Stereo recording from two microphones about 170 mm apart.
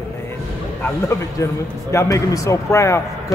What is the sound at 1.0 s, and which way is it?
A man's voice, 15° left (ahead or behind).